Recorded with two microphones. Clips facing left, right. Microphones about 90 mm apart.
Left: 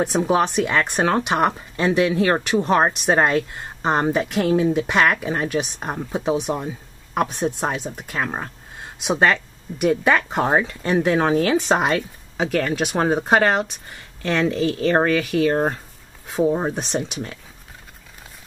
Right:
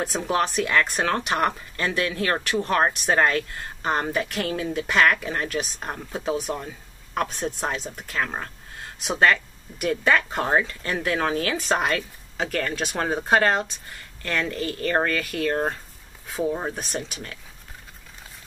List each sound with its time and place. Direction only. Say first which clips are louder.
0.0 s speech: left 5 dB; 15° left (ahead or behind)
12.4 s speech: left 6 dB; 5° left (ahead or behind)
15.0 s speech: left 7 dB; 5° left (ahead or behind)
16.3 s speech: left 6 dB; 20° left (ahead or behind)